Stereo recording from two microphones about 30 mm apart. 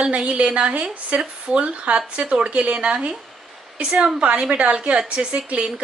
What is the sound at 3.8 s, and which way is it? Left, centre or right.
Speech, right.